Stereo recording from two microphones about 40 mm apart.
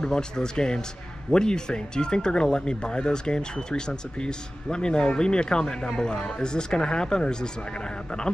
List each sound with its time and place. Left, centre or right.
0.0 s speech: centre